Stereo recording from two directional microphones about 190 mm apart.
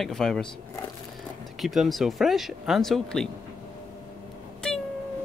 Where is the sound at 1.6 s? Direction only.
Centre (ahead or behind).